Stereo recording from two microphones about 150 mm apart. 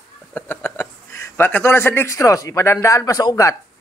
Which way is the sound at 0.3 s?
15° left (ahead or behind).